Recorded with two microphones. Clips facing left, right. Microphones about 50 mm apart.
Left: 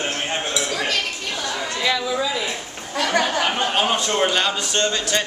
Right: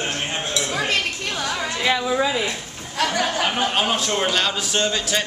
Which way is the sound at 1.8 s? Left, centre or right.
Right.